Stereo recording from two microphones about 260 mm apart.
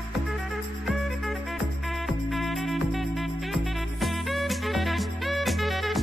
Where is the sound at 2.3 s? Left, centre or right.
Centre.